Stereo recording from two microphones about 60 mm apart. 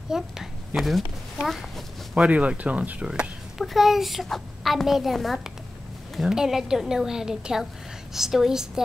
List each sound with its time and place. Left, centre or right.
0.1 s a child's voice: centre
2.1 s speech: right
3.5 s a woman's voice: centre